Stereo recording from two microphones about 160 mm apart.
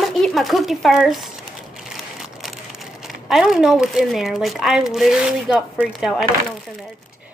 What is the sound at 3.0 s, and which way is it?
Speech, centre (ahead or behind).